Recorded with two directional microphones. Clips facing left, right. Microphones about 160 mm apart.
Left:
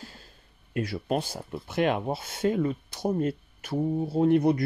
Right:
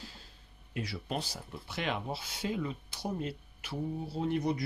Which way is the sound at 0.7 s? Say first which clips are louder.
Left 8 dB; 50° left (ahead or behind).